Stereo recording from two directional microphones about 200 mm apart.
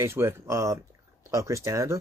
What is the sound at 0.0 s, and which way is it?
Speech, 10° right (ahead or behind).